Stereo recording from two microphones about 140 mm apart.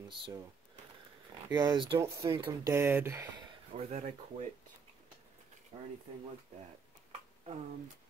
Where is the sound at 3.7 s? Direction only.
50° right (ahead or behind).